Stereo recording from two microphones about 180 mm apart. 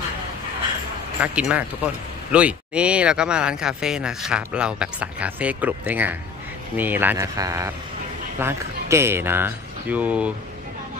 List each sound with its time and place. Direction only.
1.2 s speech: 5° right (ahead or behind)